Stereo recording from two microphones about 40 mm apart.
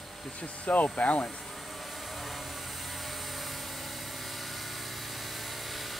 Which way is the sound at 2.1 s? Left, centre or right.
Centre.